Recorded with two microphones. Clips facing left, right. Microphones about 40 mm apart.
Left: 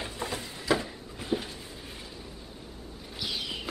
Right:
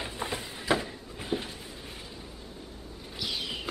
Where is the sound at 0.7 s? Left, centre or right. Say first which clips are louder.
Right 1 dB; centre.